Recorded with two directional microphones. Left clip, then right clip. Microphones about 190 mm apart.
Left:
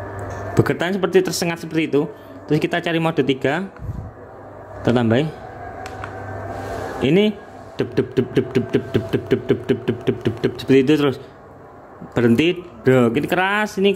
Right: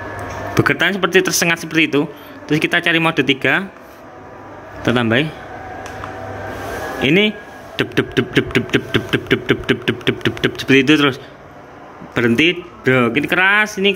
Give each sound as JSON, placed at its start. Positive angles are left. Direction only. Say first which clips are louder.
{"t": 0.6, "sound": "speech", "louder": "right 4 dB", "side_deg": 15}
{"t": 4.8, "sound": "speech", "louder": "right 2 dB", "side_deg": 20}
{"t": 7.0, "sound": "speech", "louder": "right 3 dB", "side_deg": 20}
{"t": 7.7, "sound": "speech", "louder": "right 3 dB", "side_deg": 10}